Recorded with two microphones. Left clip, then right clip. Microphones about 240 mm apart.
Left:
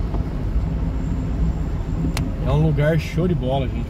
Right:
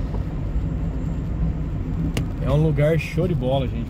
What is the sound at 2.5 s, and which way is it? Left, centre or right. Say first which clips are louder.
Speech: right 1 dB; right.